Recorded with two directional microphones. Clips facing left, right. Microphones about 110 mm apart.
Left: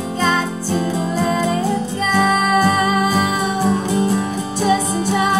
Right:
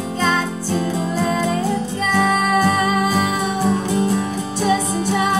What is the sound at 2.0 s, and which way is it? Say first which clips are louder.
Music: left 1 dB; 10° left (ahead or behind).